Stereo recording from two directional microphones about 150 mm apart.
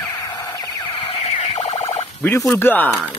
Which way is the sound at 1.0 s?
35° left (ahead or behind).